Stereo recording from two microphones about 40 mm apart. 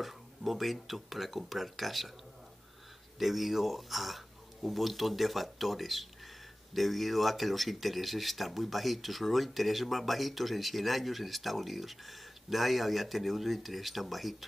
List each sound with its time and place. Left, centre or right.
0.0 s speech: centre
3.2 s speech: centre